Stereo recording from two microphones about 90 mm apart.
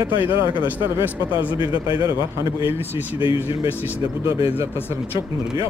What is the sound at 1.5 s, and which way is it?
Speech, 65° left (ahead or behind).